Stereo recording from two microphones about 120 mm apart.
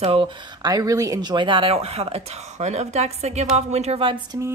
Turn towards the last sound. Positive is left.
turn(degrees=-25)  # may be behind; listen again after turning